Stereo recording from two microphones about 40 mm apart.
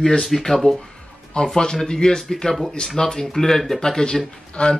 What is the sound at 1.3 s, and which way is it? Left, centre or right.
Speech, centre.